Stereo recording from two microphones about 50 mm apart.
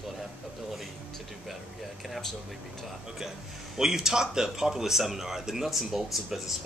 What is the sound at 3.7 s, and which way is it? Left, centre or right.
Speech, centre.